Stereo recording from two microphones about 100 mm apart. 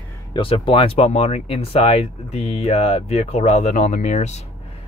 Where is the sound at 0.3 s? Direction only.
60° left (ahead or behind); by 3.7 s 90° left.